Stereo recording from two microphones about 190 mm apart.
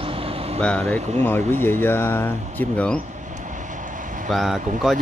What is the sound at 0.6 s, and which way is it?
Speech, 5° left (ahead or behind).